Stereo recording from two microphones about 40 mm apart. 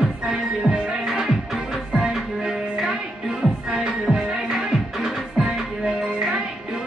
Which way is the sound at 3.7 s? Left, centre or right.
Right.